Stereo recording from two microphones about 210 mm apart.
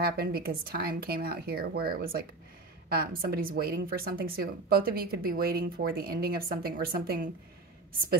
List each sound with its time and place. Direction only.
0.0 s a woman's voice: 45° right (ahead or behind)